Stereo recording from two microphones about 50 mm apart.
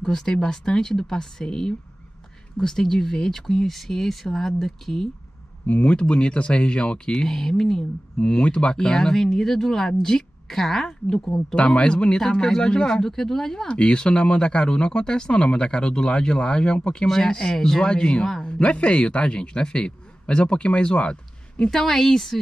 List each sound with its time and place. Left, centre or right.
0.0 s speech: centre
5.7 s a man's voice: left; by 22.4 s centre